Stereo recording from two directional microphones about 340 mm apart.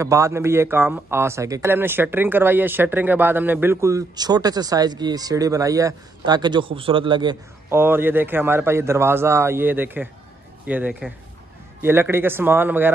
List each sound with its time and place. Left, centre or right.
0.0 s a man's voice: centre